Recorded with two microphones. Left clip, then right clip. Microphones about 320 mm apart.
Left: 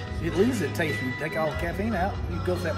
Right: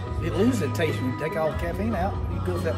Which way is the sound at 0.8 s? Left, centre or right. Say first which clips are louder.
Right 1 dB; centre.